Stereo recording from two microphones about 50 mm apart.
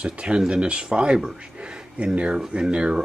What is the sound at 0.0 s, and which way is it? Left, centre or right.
Speech, centre.